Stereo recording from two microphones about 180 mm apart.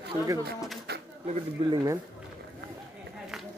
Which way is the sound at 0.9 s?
60° right (ahead or behind).